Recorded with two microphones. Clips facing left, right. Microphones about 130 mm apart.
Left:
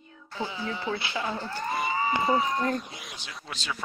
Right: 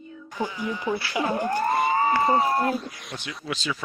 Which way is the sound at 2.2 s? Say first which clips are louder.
Right 1 dB; 50° right (ahead or behind).